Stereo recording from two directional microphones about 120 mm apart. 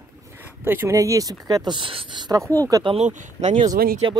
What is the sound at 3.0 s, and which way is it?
Speech, 80° right.